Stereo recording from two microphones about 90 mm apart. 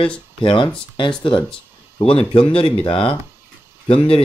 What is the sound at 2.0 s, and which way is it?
Speech, 90° left.